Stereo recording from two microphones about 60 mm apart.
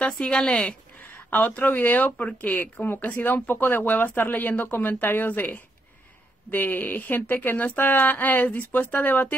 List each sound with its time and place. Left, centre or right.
0.0 s speech: centre
1.1 s a sound: left
1.6 s speech: left